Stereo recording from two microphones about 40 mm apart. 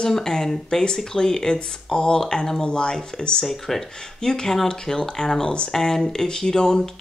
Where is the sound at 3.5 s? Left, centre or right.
Centre.